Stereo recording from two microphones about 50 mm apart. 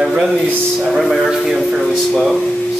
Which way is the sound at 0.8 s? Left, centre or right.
Centre.